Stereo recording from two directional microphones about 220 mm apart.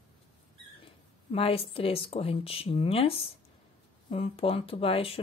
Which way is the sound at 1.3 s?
25° left (ahead or behind).